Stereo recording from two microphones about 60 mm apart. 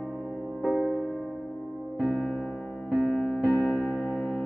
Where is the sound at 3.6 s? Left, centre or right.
Centre.